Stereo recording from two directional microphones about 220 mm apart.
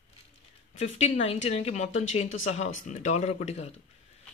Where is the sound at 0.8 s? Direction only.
30° left (ahead or behind).